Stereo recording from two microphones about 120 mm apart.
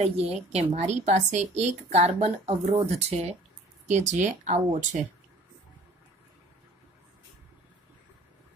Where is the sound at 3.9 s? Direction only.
85° right.